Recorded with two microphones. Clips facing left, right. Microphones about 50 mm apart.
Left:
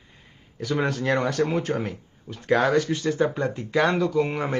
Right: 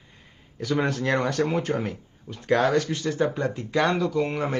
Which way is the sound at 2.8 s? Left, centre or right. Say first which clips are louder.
Left 3 dB; left.